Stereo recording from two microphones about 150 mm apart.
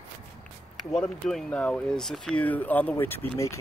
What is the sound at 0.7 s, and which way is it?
Speech, 5° left (ahead or behind).